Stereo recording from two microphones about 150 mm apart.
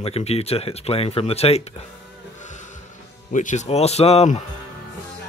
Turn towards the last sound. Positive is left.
turn(degrees=45)  # may be behind; listen again after turning